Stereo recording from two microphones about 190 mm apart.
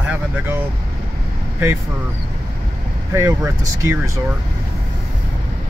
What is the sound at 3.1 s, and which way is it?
Speech, 15° right (ahead or behind).